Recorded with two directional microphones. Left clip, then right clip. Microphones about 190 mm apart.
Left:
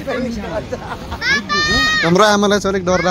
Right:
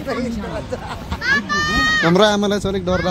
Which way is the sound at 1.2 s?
20° right (ahead or behind).